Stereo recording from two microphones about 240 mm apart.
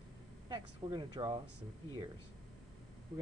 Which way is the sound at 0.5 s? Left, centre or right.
Centre.